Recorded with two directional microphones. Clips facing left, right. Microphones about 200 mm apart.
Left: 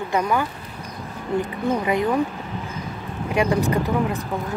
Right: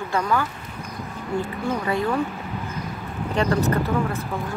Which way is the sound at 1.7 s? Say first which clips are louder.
Left 3 dB; 15° left (ahead or behind).